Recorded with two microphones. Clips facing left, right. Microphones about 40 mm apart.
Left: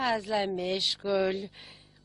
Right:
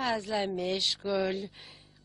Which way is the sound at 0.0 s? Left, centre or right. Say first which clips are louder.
Left 2 dB; centre.